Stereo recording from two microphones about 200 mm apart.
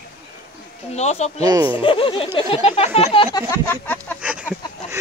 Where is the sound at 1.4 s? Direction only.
20° right (ahead or behind).